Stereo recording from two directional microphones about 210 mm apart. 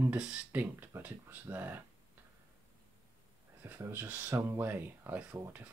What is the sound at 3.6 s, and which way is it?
Speech, 10° right (ahead or behind).